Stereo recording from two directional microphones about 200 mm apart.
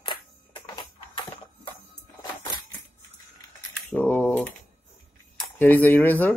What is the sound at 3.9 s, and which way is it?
Typing, 10° left (ahead or behind).